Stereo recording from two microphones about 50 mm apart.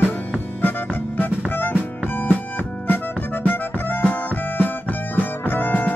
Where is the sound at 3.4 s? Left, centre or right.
Left.